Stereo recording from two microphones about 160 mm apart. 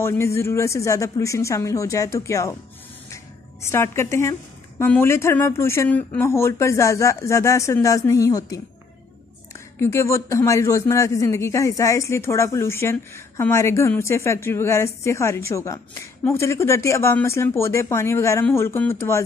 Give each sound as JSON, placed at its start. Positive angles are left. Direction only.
{"t": 0.0, "sound": "speech", "side_deg": 15}
{"t": 3.6, "sound": "a man's voice", "side_deg": 15}
{"t": 9.8, "sound": "a man's voice", "side_deg": 15}